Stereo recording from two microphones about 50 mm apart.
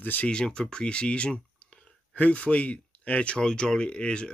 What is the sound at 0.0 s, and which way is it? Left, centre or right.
Speech, left.